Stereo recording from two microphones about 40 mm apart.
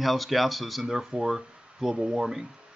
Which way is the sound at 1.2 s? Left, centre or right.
Centre.